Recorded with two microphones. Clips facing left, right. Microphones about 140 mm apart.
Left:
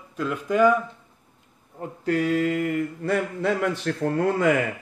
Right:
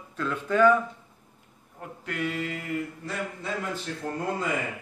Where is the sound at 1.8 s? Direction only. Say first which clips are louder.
Left 8 dB; 40° left (ahead or behind); by 4.5 s 65° left (ahead or behind).